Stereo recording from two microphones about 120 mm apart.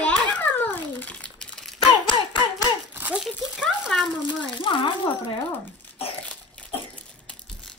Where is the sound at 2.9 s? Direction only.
15° right (ahead or behind).